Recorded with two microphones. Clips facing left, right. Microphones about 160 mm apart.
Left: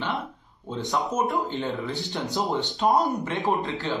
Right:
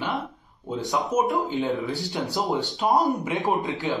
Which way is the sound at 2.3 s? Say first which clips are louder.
Even; centre (ahead or behind).